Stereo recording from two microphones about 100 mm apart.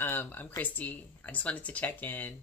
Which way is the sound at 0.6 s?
15° left (ahead or behind).